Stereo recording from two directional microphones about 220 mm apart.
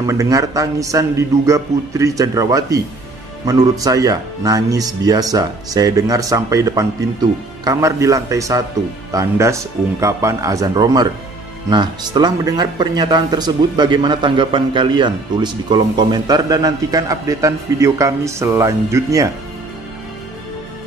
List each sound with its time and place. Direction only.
0.0 s speech: 15° right (ahead or behind)